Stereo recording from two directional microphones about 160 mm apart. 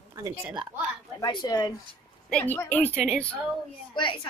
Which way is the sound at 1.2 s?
25° left (ahead or behind).